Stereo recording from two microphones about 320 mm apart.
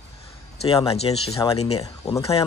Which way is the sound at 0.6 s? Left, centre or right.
Centre.